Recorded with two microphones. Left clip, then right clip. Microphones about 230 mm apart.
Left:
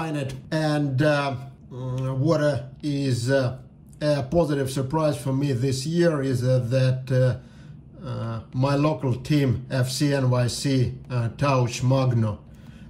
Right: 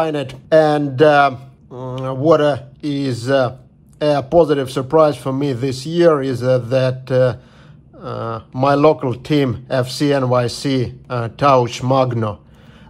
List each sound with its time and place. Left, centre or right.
0.0 s a man's voice: centre